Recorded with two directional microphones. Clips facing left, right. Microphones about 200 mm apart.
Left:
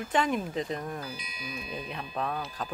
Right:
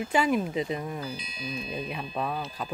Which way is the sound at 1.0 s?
25° right (ahead or behind).